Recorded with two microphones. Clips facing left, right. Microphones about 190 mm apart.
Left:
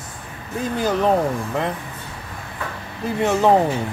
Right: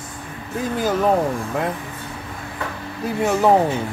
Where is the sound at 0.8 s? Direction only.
Centre (ahead or behind).